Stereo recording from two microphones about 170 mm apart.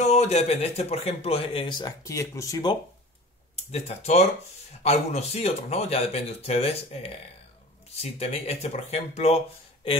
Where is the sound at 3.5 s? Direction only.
40° left (ahead or behind).